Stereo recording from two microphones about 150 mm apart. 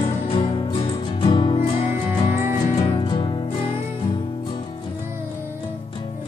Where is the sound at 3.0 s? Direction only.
30° left (ahead or behind).